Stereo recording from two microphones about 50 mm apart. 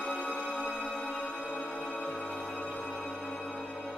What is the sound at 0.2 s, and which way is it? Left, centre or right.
Music, left.